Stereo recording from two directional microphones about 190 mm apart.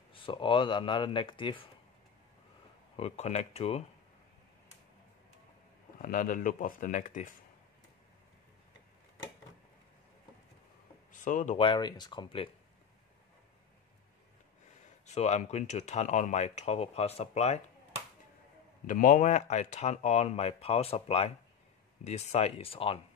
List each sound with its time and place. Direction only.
0.1 s speech: 25° left (ahead or behind)
3.0 s speech: 35° left (ahead or behind)
6.0 s speech: 45° left (ahead or behind)
11.1 s a sound: 40° left (ahead or behind)
11.5 s speech: 25° left (ahead or behind)
15.0 s speech: 35° left (ahead or behind)
18.9 s speech: 45° left (ahead or behind)